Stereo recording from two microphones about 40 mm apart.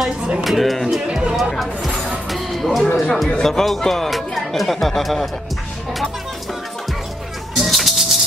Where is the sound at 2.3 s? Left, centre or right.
Centre.